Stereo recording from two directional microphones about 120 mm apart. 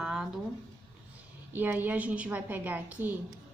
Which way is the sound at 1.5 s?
15° right (ahead or behind).